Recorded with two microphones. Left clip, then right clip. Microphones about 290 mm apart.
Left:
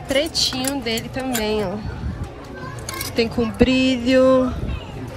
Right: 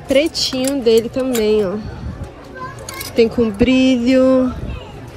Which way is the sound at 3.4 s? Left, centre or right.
Centre.